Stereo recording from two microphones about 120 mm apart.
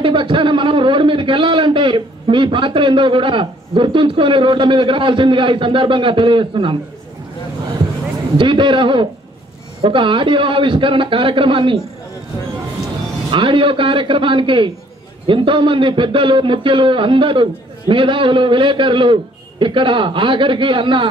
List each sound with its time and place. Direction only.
0.0 s a man's voice: 45° right (ahead or behind)
8.4 s a man's voice: 45° right (ahead or behind)
13.3 s a man's voice: 45° right (ahead or behind)